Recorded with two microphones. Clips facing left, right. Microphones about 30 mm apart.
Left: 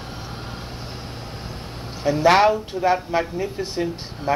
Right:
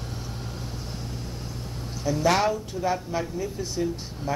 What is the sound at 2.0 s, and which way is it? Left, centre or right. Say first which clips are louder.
Speech: left 7 dB; left.